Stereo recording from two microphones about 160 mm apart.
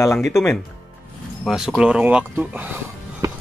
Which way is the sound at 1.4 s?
Centre (ahead or behind).